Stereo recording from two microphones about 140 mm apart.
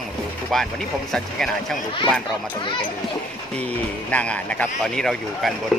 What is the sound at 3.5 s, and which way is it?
Speech, 10° left (ahead or behind).